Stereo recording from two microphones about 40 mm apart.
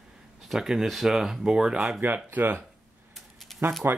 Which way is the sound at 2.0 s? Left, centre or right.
Right.